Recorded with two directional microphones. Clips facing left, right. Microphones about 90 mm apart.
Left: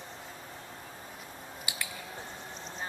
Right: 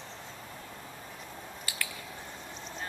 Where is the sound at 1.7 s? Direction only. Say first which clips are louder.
Right 1 dB; 15° left (ahead or behind).